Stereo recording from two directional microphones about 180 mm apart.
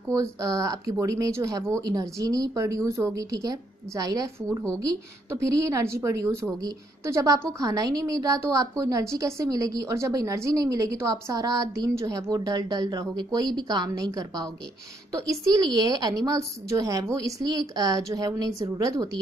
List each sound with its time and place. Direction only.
0.1 s a woman's voice: 20° right (ahead or behind)